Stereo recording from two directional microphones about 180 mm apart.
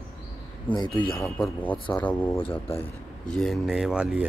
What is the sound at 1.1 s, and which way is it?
Speech, 5° left (ahead or behind).